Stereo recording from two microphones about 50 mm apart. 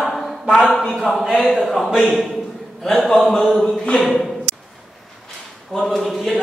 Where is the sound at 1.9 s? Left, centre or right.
Centre.